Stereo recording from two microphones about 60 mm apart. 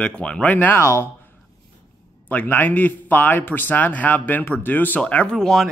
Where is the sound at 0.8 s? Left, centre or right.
Left.